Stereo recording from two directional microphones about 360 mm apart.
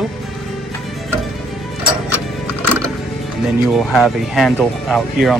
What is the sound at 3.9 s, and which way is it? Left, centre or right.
Speech, centre.